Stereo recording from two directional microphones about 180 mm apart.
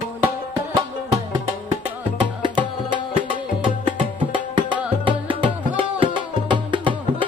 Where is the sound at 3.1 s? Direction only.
30° right (ahead or behind).